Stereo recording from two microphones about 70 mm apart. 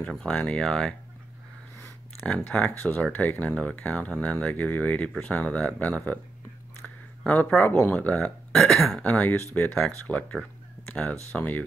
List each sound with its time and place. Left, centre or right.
0.0 s speech: centre
2.2 s speech: centre
7.2 s speech: centre
8.5 s speech: centre
9.0 s speech: centre
11.3 s speech: left